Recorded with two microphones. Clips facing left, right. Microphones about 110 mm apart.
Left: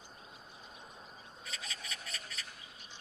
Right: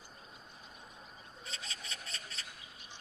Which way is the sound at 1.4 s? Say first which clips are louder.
Left 1 dB; 30° right (ahead or behind).